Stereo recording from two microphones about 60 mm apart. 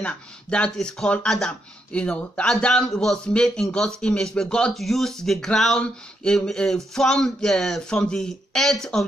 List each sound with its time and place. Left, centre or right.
0.0 s speech: centre
0.7 s speech: centre
1.0 s speech: centre
4.7 s speech: centre